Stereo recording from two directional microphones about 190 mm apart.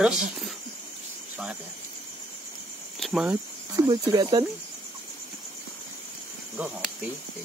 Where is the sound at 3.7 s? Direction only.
20° right (ahead or behind).